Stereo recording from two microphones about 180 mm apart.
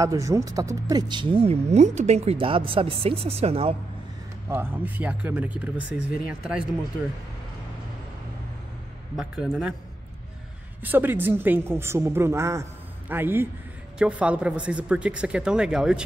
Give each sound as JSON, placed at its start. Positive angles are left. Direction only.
{"t": 0.0, "sound": "speech", "side_deg": -20}
{"t": 4.5, "sound": "a man's voice", "side_deg": -10}
{"t": 9.1, "sound": "a man's voice", "side_deg": -5}
{"t": 10.8, "sound": "speech", "side_deg": -10}